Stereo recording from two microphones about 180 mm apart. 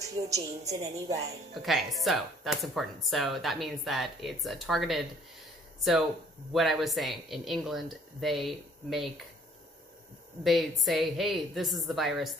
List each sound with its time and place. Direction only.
0.3 s a woman's voice: 20° right (ahead or behind)
1.5 s speech: centre (ahead or behind)
10.4 s speech: centre (ahead or behind)